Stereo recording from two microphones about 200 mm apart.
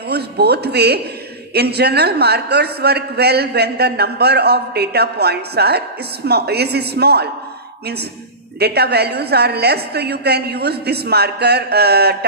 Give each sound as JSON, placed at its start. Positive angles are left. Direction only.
{"t": 0.1, "sound": "a man's voice", "side_deg": -55}
{"t": 8.5, "sound": "a man's voice", "side_deg": -55}